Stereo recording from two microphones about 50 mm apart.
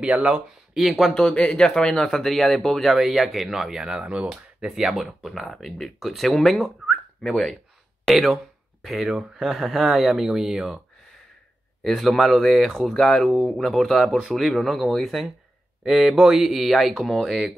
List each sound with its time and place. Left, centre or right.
0.0 s speech: right
0.7 s speech: centre
1.1 s speech: centre
4.9 s speech: centre
11.8 s speech: centre